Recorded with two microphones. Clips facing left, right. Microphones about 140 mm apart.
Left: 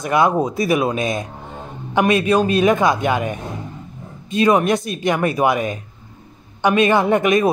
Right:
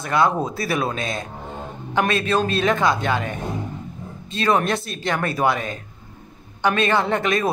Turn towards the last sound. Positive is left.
turn(degrees=15)  # may be behind; listen again after turning